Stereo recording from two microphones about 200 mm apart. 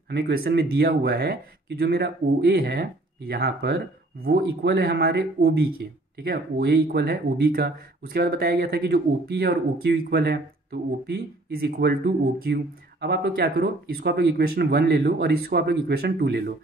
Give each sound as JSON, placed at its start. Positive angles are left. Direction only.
{"t": 0.1, "sound": "speech", "side_deg": -50}